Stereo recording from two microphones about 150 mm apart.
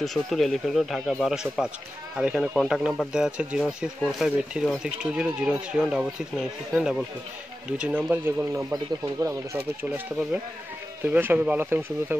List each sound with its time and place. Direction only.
0.0 s speech: centre (ahead or behind); by 12.2 s 15° right (ahead or behind)